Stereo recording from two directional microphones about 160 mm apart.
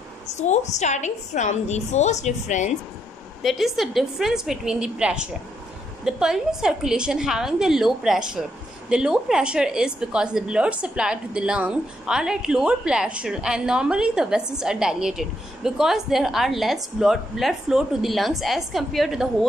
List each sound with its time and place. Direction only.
0.3 s a woman's voice: 45° left (ahead or behind)
3.4 s a woman's voice: centre (ahead or behind)